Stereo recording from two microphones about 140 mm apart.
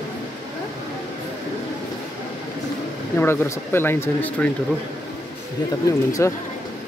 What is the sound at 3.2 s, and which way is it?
Speech, 15° left (ahead or behind).